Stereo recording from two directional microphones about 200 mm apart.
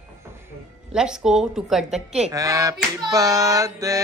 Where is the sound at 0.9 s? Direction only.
5° right (ahead or behind).